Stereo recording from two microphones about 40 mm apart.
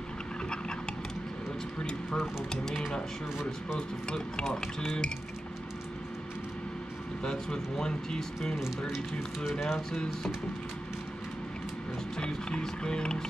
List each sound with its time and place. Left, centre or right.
1.8 s speech: left
2.5 s speech: centre
4.1 s speech: left
7.2 s speech: centre
9.6 s speech: centre
12.3 s speech: left